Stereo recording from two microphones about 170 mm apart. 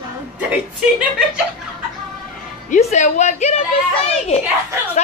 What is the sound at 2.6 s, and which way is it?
Speech, 45° left (ahead or behind).